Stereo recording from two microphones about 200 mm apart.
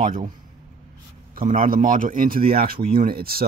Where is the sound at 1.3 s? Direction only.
40° right (ahead or behind).